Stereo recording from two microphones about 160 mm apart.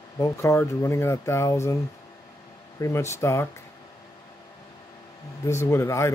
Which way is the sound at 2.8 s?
15° left (ahead or behind).